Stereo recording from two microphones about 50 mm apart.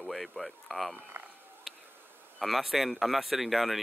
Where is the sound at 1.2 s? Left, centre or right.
Right.